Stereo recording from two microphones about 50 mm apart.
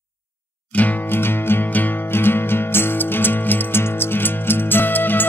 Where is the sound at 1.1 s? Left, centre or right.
Left.